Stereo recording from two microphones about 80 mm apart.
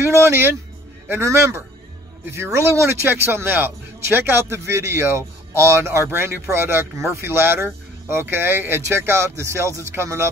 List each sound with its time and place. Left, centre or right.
0.2 s a man's voice: right